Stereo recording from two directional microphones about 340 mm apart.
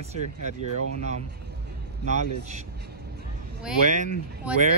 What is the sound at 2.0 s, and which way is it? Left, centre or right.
Speech, centre.